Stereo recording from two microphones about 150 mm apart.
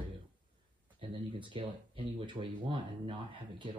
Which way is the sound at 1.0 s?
35° right (ahead or behind).